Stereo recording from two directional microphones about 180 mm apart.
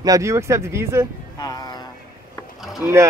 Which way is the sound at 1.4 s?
20° left (ahead or behind).